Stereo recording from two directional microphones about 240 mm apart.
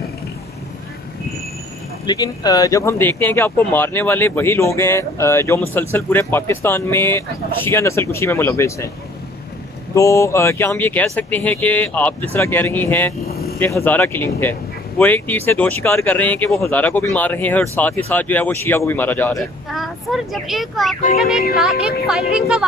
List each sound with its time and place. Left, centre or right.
2.0 s speech: centre
9.9 s a woman's voice: centre